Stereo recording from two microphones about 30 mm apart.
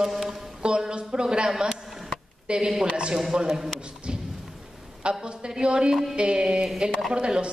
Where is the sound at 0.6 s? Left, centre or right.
Right.